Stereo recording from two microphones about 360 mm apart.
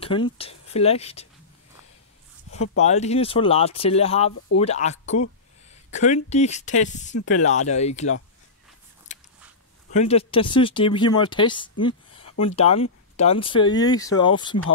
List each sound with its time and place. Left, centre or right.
0.0 s speech: centre
2.5 s speech: left
2.8 s speech: centre
9.1 s a sound: centre
9.8 s speech: centre